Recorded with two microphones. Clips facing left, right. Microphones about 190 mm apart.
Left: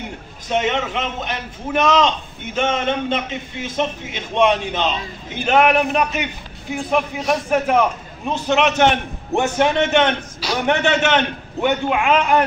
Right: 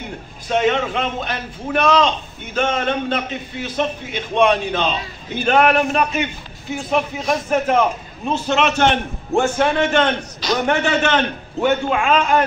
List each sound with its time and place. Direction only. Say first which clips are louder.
0.5 s a man's voice: right 2 dB; 20° left (ahead or behind)